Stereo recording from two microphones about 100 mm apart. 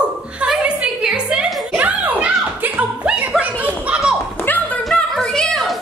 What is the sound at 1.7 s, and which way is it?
Chuckle, 15° right (ahead or behind).